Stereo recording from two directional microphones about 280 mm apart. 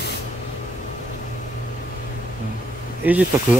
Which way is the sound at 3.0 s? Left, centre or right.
Centre.